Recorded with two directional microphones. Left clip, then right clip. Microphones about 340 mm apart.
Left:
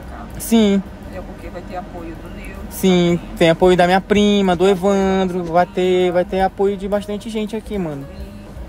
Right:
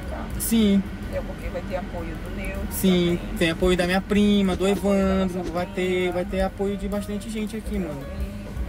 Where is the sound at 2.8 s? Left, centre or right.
Left.